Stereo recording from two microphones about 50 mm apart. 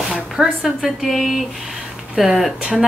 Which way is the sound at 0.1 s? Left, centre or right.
Centre.